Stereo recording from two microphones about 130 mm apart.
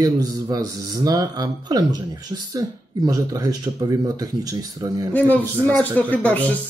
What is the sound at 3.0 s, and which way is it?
Speech, 30° right (ahead or behind).